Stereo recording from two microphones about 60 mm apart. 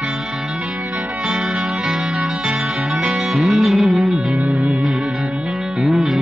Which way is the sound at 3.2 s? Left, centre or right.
Centre.